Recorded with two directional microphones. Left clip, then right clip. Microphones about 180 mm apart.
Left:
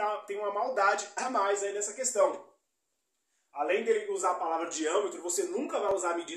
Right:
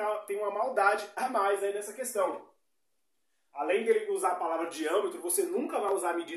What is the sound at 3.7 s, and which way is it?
Speech, 20° right (ahead or behind).